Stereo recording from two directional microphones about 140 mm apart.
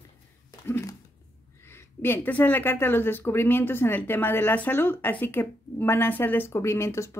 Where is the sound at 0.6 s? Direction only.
20° left (ahead or behind).